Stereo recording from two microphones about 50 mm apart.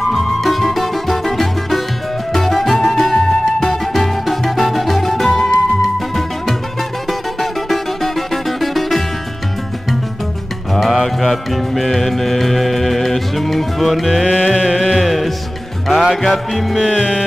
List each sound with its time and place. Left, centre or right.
0.1 s music: centre
7.1 s music: centre
10.7 s music: centre
14.2 s music: right; by 16.8 s centre
16.8 s music: centre